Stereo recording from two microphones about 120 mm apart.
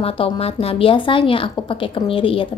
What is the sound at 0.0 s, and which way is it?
A woman's voice, 55° left (ahead or behind).